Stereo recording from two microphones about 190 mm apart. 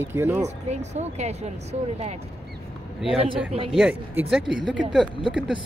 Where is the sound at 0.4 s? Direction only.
35° right (ahead or behind).